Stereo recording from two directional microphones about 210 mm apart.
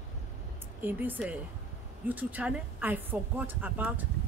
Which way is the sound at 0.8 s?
10° right (ahead or behind).